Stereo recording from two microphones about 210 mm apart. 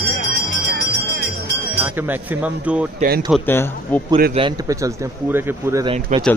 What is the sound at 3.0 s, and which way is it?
Speech, 45° right (ahead or behind).